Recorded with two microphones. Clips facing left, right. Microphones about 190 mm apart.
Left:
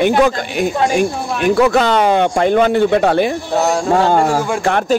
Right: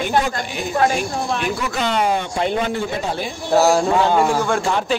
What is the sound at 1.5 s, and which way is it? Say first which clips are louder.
Speech: left 9 dB; 70° left (ahead or behind).